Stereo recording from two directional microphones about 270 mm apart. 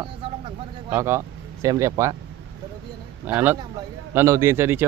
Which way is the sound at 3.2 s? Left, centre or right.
Centre.